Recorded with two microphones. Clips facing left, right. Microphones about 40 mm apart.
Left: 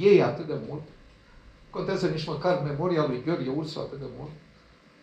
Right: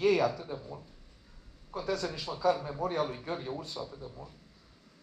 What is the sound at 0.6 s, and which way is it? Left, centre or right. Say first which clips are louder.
Speech: left 9 dB; left.